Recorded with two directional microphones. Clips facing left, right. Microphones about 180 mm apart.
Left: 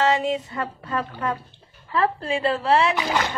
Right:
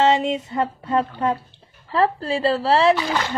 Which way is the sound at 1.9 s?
35° right (ahead or behind).